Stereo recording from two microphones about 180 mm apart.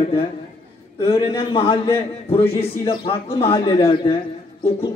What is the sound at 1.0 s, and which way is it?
A man's voice, 30° left (ahead or behind).